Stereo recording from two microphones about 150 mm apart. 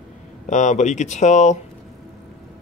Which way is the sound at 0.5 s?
55° left (ahead or behind).